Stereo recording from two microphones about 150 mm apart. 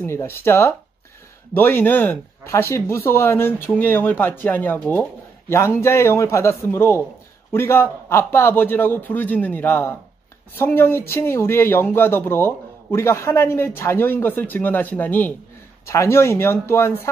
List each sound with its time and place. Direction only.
0.0 s speech: 15° left (ahead or behind)